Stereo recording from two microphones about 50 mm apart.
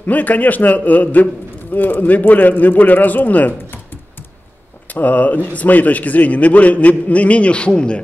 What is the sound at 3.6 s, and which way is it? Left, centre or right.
Typing, left.